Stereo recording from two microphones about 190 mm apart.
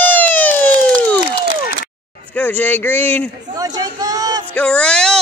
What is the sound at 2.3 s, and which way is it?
Speech, 10° left (ahead or behind).